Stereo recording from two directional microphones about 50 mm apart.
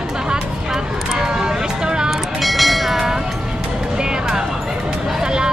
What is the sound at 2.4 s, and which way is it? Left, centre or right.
Train, centre.